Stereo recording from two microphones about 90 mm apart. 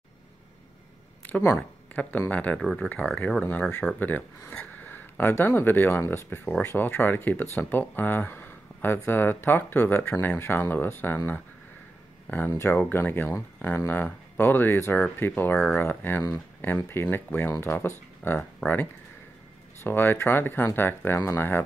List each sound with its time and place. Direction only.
1.2 s a sound: 20° left (ahead or behind)
2.0 s speech: 20° left (ahead or behind)
2.6 s speech: 5° left (ahead or behind)
3.2 s speech: 15° left (ahead or behind)
12.3 s speech: 20° left (ahead or behind)